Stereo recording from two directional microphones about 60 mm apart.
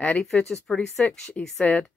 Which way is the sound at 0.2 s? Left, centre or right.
Centre.